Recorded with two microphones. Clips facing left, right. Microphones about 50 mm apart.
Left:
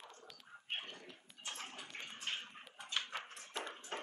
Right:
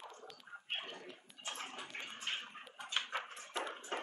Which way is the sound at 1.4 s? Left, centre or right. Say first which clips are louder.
Right 2 dB; centre.